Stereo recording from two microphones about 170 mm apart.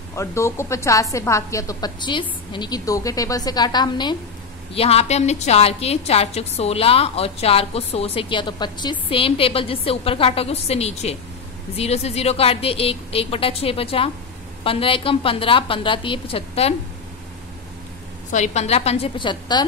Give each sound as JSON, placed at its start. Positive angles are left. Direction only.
{"t": 0.1, "sound": "a woman's voice", "side_deg": 15}
{"t": 4.7, "sound": "a woman's voice", "side_deg": 35}
{"t": 18.3, "sound": "a woman's voice", "side_deg": 45}